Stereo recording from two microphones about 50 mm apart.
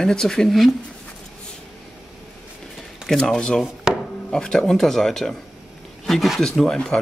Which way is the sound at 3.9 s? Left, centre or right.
Centre.